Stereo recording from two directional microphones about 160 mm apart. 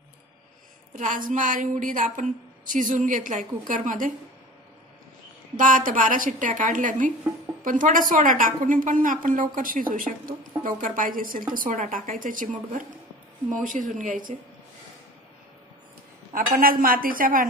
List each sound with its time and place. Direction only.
0.9 s a woman's voice: 55° right (ahead or behind)
5.6 s a woman's voice: 55° right (ahead or behind)
13.5 s a woman's voice: 55° right (ahead or behind)
16.3 s a woman's voice: 65° right (ahead or behind)